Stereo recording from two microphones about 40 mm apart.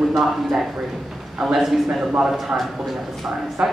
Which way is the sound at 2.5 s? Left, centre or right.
Right.